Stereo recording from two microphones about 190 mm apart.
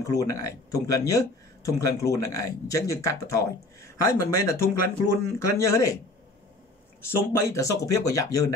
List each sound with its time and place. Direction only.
0.0 s speech: 15° left (ahead or behind)
7.0 s speech: 15° left (ahead or behind)